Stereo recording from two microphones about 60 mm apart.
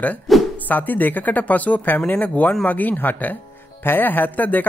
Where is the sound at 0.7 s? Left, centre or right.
Left.